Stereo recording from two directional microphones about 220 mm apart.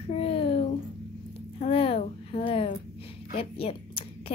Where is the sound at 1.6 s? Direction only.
25° left (ahead or behind).